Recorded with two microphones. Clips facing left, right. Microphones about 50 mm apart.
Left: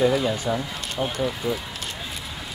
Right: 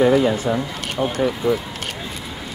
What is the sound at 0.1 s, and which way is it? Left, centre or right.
Speech, right.